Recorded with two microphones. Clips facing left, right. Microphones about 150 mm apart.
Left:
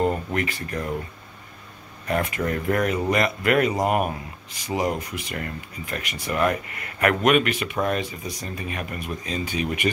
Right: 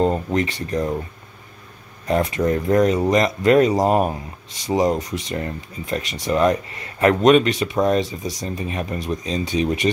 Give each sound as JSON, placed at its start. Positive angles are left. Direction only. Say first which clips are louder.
{"t": 0.0, "sound": "speech", "louder": "right 4 dB", "side_deg": -25}
{"t": 2.0, "sound": "speech", "louder": "right 5 dB", "side_deg": -25}